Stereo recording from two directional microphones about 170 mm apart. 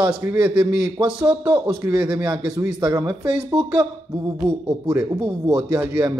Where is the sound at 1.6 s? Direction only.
10° right (ahead or behind).